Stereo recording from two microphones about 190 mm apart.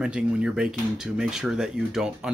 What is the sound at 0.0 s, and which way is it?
Speech, 5° right (ahead or behind).